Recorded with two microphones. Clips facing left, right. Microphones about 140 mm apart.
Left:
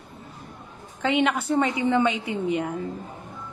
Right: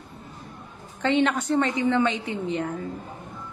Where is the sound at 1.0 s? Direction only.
10° left (ahead or behind).